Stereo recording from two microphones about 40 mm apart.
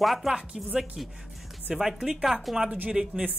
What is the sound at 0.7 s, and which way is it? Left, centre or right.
Speech, centre.